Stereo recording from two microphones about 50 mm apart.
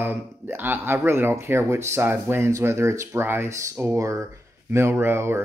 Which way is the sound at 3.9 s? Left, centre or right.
Right.